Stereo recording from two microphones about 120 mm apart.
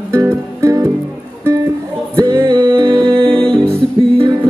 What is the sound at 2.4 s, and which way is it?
Music, 45° right (ahead or behind).